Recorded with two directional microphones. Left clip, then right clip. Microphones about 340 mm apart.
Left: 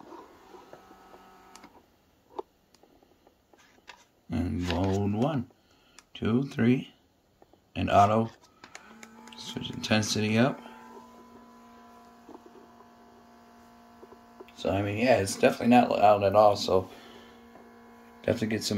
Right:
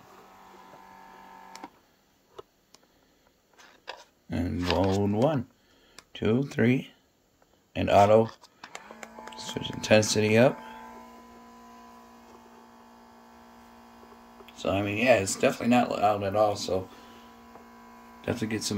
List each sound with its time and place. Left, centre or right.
3.5 s a sound: centre
4.3 s a sound: centre
6.1 s speech: centre
8.4 s cattle: centre
9.8 s speech: centre
14.6 s speech: centre
18.2 s speech: centre